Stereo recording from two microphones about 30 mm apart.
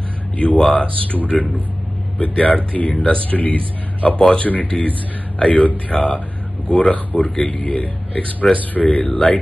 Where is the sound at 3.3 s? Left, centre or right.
Left.